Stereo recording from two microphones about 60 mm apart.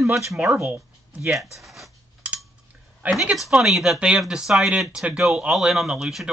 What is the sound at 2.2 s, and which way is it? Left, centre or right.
Cutlery, right.